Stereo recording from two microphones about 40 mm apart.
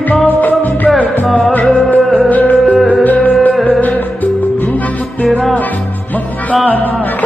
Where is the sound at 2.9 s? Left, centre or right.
Left.